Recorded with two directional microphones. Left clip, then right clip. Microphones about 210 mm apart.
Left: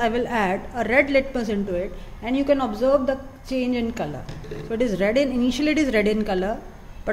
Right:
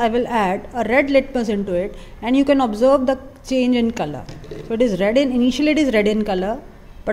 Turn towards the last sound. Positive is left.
turn(degrees=-15)  # may be behind; listen again after turning